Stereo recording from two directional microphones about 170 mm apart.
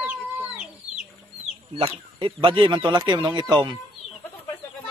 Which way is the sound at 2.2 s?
30° right (ahead or behind).